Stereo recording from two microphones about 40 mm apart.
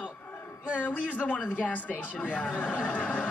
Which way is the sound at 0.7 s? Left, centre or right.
Left.